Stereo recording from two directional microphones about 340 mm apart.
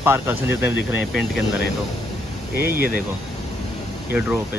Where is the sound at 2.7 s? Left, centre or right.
Left.